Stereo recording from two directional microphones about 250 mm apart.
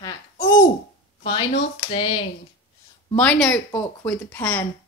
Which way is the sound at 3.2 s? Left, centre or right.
Centre.